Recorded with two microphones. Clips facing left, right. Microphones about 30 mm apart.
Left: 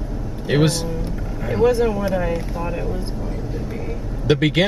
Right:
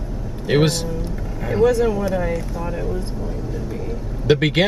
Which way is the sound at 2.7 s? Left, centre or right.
Centre.